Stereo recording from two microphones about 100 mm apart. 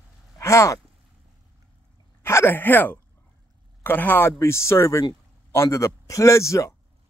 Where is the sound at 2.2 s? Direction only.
25° left (ahead or behind).